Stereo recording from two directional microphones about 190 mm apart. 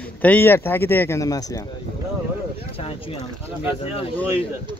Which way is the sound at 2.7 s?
30° left (ahead or behind).